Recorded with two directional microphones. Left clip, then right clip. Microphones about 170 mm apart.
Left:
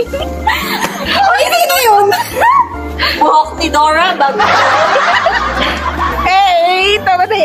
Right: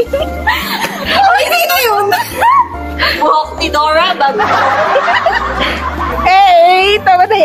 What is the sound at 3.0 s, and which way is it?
Speech, centre (ahead or behind).